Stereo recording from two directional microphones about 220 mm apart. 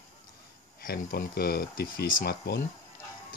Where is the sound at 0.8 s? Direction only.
40° left (ahead or behind).